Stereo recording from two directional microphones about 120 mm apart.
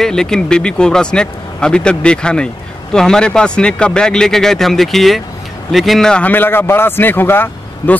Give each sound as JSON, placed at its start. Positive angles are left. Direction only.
{"t": 0.0, "sound": "a man's voice", "side_deg": 5}